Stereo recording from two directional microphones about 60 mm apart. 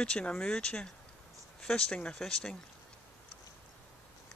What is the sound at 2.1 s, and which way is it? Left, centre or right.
Speech, centre.